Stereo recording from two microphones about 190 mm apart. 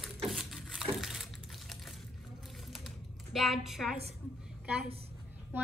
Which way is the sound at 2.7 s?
Centre (ahead or behind).